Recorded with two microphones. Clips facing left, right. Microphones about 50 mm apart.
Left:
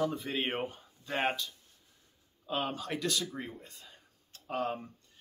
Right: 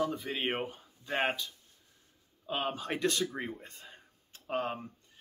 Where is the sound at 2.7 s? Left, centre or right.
Right.